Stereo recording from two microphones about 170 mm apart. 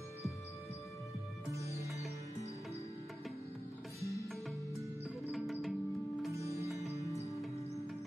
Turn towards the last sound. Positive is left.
turn(degrees=20)  # may be behind; listen again after turning